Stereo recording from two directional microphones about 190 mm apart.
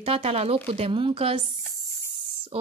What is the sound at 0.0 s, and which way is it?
Speech, 30° right (ahead or behind).